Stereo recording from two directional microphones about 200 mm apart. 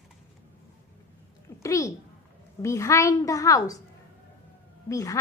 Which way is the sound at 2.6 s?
15° left (ahead or behind).